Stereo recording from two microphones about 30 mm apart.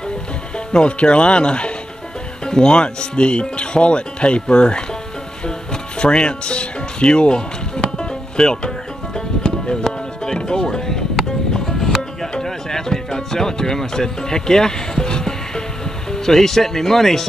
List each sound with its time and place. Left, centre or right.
0.7 s speech: left
5.4 s music: left
16.1 s speech: centre